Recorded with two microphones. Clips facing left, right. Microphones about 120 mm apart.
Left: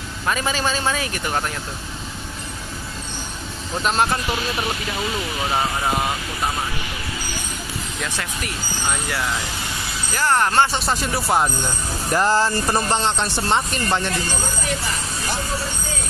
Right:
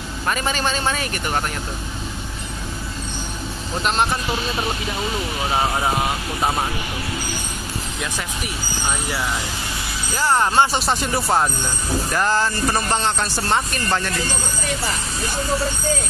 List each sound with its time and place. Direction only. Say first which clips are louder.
0.3 s speech: even; centre (ahead or behind)
8.0 s speech: even; 5° right (ahead or behind)
8.8 s speech: even; 15° right (ahead or behind)
10.9 s speech: right 1 dB; centre (ahead or behind)
12.1 s speech: left 3 dB; 25° left (ahead or behind)